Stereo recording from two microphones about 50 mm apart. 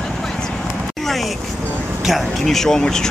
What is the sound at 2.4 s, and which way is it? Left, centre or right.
Speech, centre.